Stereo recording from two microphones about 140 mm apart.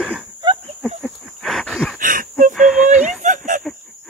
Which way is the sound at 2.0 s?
75° right (ahead or behind).